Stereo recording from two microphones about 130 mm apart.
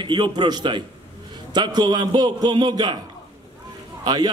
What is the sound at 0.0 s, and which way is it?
A man's voice, 35° right (ahead or behind).